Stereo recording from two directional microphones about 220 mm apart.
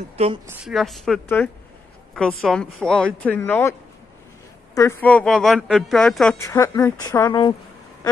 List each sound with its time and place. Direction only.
0.5 s speech: centre (ahead or behind)
4.7 s speech: 10° left (ahead or behind)
6.4 s speech: 15° left (ahead or behind)